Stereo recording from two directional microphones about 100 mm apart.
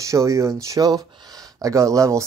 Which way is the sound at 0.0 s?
30° right (ahead or behind).